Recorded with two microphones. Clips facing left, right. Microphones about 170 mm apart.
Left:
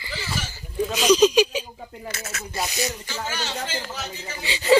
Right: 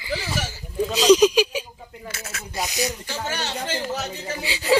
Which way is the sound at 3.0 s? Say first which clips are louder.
Right 2 dB; 60° right (ahead or behind).